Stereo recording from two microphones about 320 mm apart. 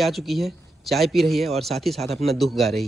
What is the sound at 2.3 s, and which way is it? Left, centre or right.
Speech, centre.